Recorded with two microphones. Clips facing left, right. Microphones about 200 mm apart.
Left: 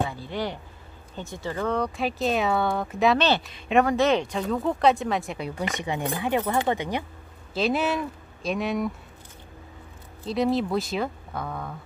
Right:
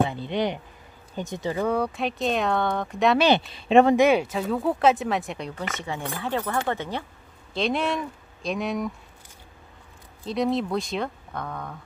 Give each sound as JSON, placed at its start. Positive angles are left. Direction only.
{"t": 0.0, "sound": "speech", "side_deg": -20}
{"t": 3.2, "sound": "speech", "side_deg": -15}
{"t": 3.4, "sound": "speech", "side_deg": -30}
{"t": 3.9, "sound": "speech", "side_deg": -10}
{"t": 5.6, "sound": "speech", "side_deg": 15}
{"t": 7.5, "sound": "speech", "side_deg": 5}
{"t": 10.2, "sound": "speech", "side_deg": 0}